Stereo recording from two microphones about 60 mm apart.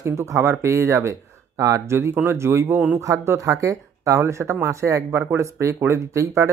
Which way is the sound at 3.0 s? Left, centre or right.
Right.